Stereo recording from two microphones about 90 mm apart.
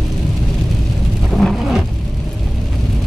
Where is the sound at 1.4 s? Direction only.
5° left (ahead or behind).